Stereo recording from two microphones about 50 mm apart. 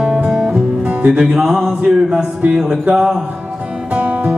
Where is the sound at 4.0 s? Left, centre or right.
Right.